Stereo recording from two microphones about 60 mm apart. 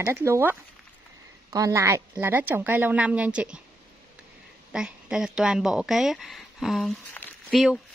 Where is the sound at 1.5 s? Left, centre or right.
Right.